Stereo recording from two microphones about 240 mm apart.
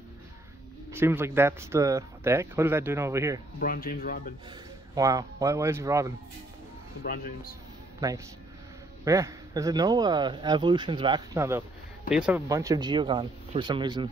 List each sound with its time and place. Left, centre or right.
0.9 s speech: centre
3.5 s speech: left
4.5 s speech: centre
7.0 s speech: left
9.0 s speech: centre